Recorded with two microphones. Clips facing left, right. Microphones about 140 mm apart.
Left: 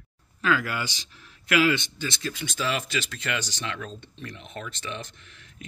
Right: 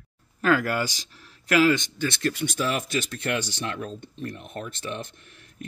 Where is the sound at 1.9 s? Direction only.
60° right (ahead or behind).